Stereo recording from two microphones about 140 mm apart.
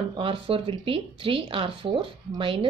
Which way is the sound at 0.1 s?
40° right (ahead or behind).